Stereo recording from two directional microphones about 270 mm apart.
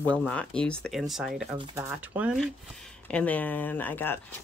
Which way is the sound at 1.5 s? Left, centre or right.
Centre.